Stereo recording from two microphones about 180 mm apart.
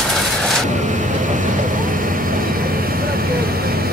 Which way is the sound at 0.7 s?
45° right (ahead or behind).